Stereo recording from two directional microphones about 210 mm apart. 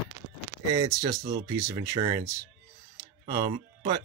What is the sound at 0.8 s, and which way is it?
Speech, 15° right (ahead or behind).